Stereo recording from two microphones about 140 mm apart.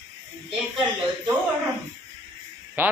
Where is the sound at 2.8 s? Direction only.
15° right (ahead or behind).